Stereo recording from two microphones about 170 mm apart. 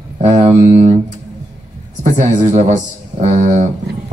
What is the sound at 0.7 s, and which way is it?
Speech, 45° right (ahead or behind).